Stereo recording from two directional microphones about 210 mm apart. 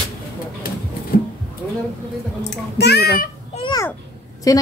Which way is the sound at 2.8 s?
50° left (ahead or behind).